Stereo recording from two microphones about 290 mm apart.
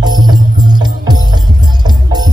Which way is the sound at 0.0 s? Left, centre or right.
Centre.